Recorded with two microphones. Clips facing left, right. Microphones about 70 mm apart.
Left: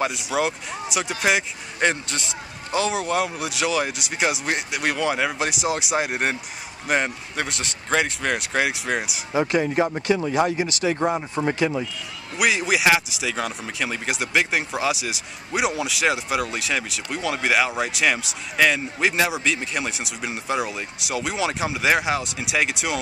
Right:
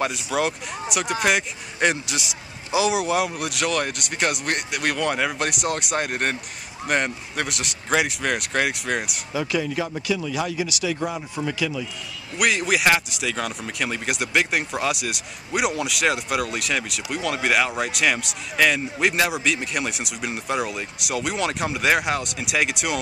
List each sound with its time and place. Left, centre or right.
0.0 s speech: centre
9.3 s speech: left
12.4 s speech: centre